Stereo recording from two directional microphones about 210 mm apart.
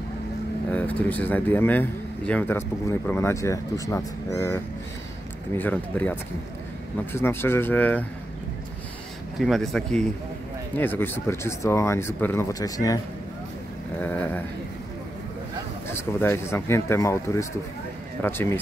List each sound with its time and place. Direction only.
0.7 s speech: 5° left (ahead or behind)
5.6 s speech: 10° left (ahead or behind)
9.4 s speech: centre (ahead or behind)
16.2 s speech: 10° left (ahead or behind)